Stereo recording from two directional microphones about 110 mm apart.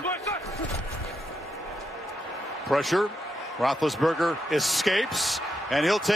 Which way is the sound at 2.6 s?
Centre (ahead or behind).